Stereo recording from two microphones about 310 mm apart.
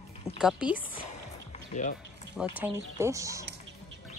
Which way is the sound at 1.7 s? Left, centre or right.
Left.